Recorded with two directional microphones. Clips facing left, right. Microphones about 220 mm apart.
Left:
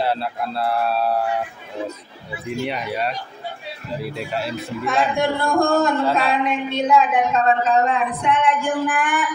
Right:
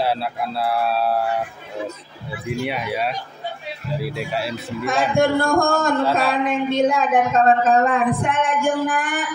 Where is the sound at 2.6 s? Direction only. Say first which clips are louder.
Even; 5° right (ahead or behind).